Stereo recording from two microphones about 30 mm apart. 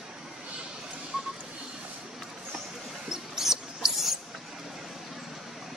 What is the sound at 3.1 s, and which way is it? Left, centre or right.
Mouse, centre.